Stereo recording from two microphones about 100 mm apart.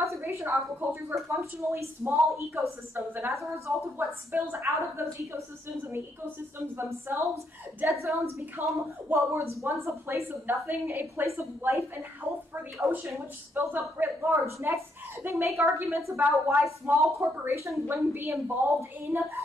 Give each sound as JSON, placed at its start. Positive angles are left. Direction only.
{"t": 0.0, "sound": "a woman's voice", "side_deg": -25}